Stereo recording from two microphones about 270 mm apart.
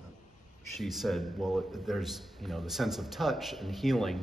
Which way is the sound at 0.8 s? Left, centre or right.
Centre.